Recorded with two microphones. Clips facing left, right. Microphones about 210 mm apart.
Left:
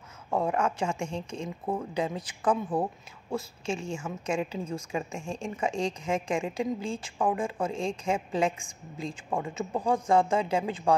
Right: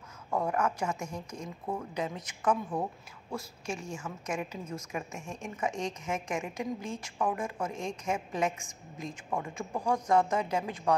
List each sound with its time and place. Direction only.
0.3 s a woman's voice: 25° left (ahead or behind)